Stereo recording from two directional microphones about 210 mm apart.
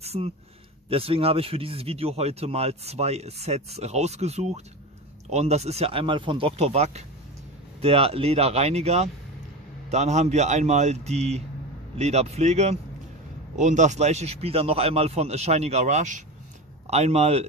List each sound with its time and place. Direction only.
0.0 s speech: 30° right (ahead or behind)